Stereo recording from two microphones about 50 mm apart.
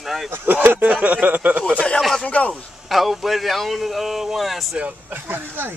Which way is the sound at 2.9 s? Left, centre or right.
Centre.